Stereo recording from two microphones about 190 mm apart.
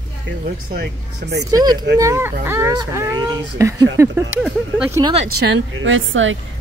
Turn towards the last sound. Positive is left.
turn(degrees=-90)